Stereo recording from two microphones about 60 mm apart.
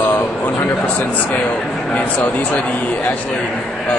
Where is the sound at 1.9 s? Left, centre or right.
Left.